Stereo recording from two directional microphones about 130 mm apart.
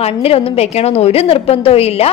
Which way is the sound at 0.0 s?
45° left (ahead or behind).